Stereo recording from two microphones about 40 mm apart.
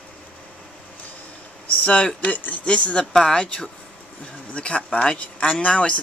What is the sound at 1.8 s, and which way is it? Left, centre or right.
Speech, left.